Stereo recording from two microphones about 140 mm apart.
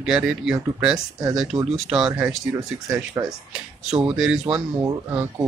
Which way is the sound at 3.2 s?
20° right (ahead or behind).